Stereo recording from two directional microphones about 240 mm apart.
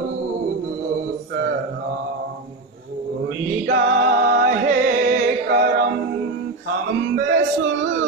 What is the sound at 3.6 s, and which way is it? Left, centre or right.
Music, right.